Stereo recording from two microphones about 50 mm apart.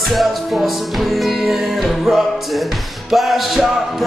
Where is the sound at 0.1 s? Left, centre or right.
Centre.